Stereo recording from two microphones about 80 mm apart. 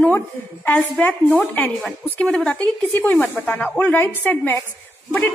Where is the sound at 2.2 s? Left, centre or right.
Centre.